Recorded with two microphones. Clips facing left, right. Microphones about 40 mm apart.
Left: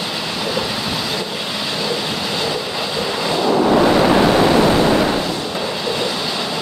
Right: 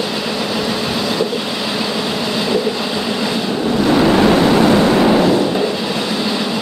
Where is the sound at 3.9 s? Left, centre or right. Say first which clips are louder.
Right 1 dB; centre.